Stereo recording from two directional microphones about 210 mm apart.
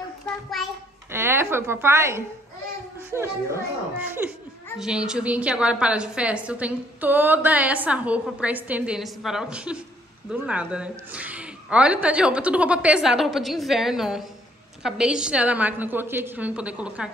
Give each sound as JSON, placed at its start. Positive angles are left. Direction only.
{"t": 1.1, "sound": "a woman's voice", "side_deg": -10}